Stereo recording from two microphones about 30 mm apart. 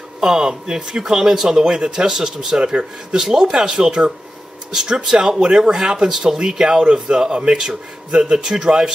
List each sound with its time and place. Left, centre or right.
0.2 s speech: right
2.5 s speech: right
3.2 s speech: centre
4.7 s speech: right
6.8 s speech: right